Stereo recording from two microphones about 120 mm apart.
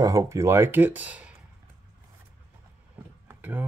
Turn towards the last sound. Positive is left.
turn(degrees=-15)  # may be behind; listen again after turning